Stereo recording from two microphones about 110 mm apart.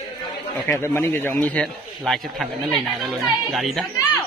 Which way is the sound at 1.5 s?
5° left (ahead or behind).